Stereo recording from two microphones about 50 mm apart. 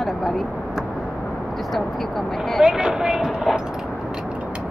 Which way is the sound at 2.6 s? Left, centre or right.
Centre.